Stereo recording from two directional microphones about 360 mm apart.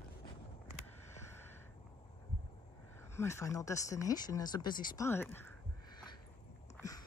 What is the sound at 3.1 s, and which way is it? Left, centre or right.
Speech, centre.